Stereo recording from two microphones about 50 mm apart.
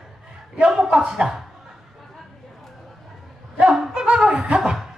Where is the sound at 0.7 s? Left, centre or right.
Centre.